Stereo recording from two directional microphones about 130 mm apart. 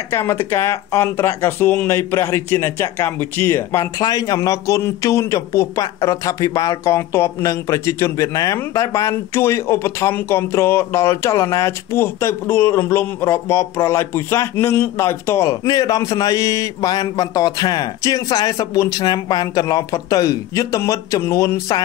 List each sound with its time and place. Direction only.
0.1 s speech: 20° left (ahead or behind)